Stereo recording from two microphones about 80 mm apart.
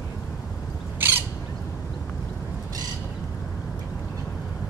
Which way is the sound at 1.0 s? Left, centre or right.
Right.